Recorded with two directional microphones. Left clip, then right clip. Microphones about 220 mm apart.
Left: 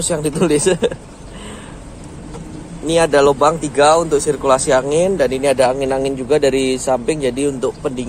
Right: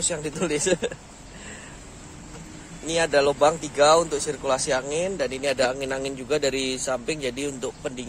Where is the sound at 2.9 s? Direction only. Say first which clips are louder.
Left 9 dB; 10° left (ahead or behind).